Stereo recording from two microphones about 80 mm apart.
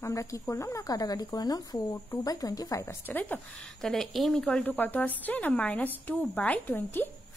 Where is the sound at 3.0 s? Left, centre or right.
Left.